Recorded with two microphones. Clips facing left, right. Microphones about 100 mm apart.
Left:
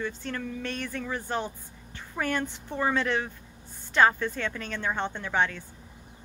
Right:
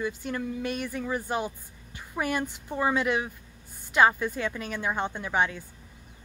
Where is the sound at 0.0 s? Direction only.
10° right (ahead or behind).